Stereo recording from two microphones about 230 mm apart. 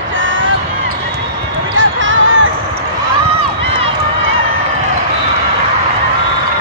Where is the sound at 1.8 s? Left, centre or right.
Right.